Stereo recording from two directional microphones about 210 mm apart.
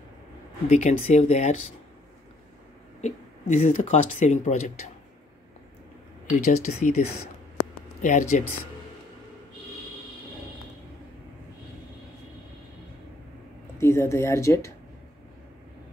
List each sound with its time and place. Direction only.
0.7 s speech: 35° left (ahead or behind)
3.0 s speech: 35° left (ahead or behind)
6.4 s speech: 35° left (ahead or behind)
13.7 s speech: 15° left (ahead or behind)